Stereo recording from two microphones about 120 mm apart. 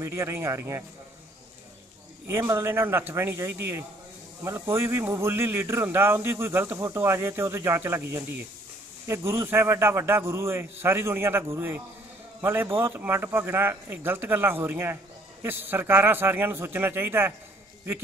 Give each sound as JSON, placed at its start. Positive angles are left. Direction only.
{"t": 0.0, "sound": "speech", "side_deg": -25}
{"t": 2.2, "sound": "speech", "side_deg": -20}